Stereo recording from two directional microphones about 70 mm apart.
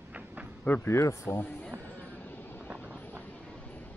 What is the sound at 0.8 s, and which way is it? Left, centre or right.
Speech, left.